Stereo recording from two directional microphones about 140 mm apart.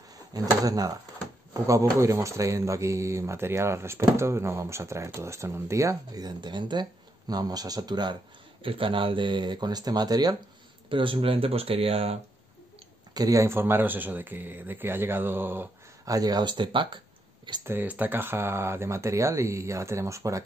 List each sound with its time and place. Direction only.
0.3 s speech: 25° right (ahead or behind)
10.9 s speech: 40° right (ahead or behind)
13.1 s speech: 25° right (ahead or behind)
16.1 s speech: 25° right (ahead or behind)
17.6 s speech: 15° right (ahead or behind)